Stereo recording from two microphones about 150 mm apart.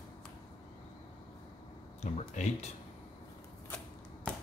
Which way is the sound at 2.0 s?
50° left (ahead or behind).